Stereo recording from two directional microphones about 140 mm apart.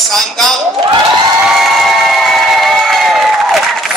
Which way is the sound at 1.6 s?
Centre (ahead or behind).